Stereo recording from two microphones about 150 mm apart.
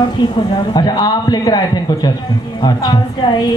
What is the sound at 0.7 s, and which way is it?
A woman's voice, 25° left (ahead or behind).